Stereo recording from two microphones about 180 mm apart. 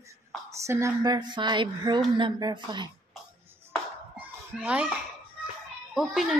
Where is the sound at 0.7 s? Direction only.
15° right (ahead or behind).